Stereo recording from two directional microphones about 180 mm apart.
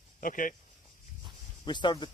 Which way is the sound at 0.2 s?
50° left (ahead or behind).